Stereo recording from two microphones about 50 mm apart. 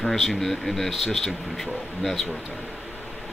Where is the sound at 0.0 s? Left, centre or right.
Centre.